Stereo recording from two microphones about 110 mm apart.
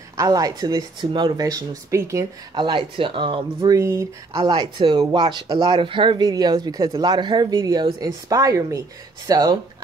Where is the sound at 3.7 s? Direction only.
25° right (ahead or behind).